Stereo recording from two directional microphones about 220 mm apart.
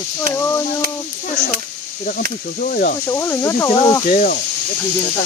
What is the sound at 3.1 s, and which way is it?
Speech, 15° left (ahead or behind).